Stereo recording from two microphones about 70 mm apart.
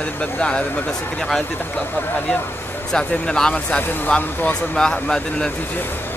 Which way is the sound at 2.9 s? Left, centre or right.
Centre.